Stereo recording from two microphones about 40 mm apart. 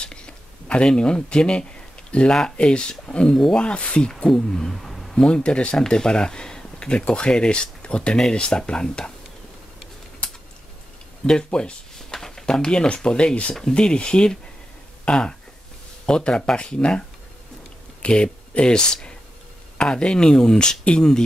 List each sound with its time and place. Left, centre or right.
0.0 s a sound: left
2.4 s speech: left
3.5 s speech: left
4.7 s a sound: centre
5.1 s speech: left
11.2 s speech: left
18.0 s speech: left